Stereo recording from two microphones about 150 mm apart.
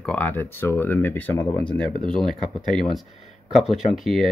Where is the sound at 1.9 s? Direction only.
35° right (ahead or behind).